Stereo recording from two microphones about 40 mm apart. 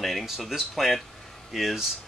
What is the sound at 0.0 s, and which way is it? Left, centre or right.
Speech, centre.